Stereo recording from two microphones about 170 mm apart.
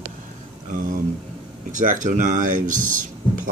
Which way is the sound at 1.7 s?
50° right (ahead or behind).